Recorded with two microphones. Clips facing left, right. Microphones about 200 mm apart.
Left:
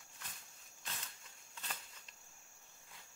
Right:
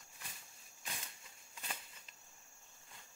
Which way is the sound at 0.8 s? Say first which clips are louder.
Right 1 dB; 10° right (ahead or behind).